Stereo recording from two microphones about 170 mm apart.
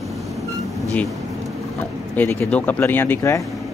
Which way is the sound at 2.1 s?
10° left (ahead or behind).